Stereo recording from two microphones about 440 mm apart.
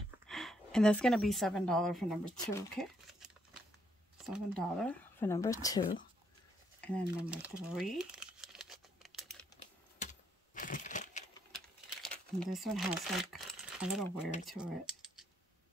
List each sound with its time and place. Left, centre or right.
0.3 s a woman's voice: centre
6.8 s crumpling: centre
9.9 s a sound: centre
12.0 s speech: centre